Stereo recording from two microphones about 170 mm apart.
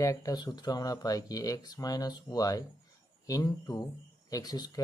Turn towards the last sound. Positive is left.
turn(degrees=20)  # may be behind; listen again after turning